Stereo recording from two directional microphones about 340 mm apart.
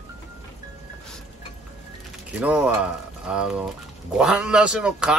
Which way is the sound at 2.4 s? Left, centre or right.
Centre.